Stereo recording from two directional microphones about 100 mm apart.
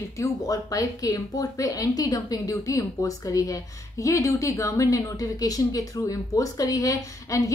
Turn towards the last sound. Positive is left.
turn(degrees=35)  # may be behind; listen again after turning